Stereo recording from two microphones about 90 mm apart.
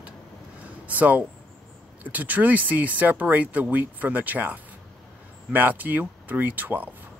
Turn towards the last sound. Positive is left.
turn(degrees=-20)  # may be behind; listen again after turning